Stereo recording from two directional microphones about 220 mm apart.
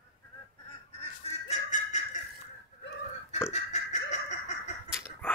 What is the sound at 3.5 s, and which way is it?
Fowl, 30° left (ahead or behind).